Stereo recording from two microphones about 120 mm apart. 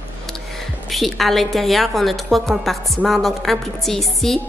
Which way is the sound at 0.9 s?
Centre (ahead or behind).